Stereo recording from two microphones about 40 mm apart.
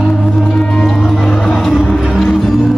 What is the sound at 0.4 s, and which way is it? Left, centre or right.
Music, centre.